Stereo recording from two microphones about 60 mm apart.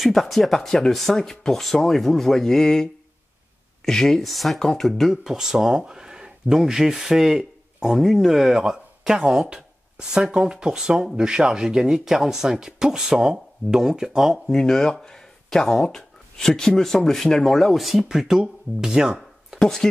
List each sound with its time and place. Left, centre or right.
0.0 s speech: centre
5.2 s speech: centre
14.6 s speech: centre
18.0 s speech: centre
19.6 s speech: centre